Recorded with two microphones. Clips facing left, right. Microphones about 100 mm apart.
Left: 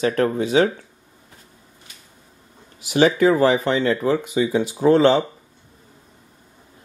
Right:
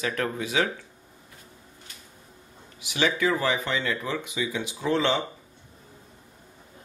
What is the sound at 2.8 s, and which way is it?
Speech, 40° left (ahead or behind).